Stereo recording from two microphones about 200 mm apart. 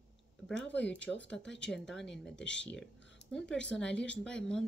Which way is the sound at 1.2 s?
65° left (ahead or behind).